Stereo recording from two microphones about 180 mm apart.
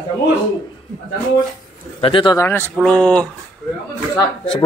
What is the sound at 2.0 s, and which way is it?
Speech, 30° left (ahead or behind).